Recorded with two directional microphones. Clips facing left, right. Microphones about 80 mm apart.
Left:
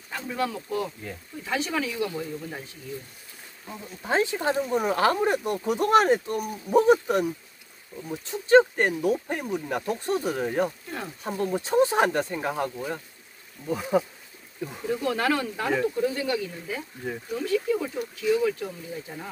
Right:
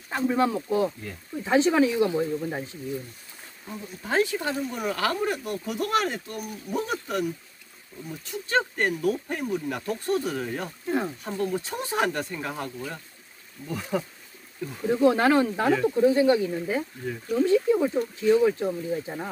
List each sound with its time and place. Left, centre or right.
0.1 s speech: right
3.7 s speech: left
7.9 s speech: centre
8.3 s speech: left
14.9 s speech: right
17.3 s speech: right